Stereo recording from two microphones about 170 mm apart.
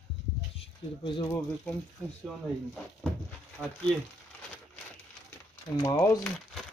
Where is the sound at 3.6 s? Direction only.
10° left (ahead or behind).